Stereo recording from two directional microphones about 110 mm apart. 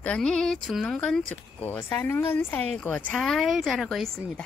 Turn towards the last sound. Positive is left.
turn(degrees=0)  # may be behind; listen again after turning